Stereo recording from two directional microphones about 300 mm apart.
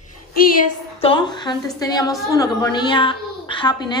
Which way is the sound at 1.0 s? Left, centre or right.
Centre.